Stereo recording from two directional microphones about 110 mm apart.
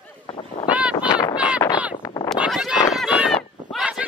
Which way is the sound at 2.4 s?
5° right (ahead or behind).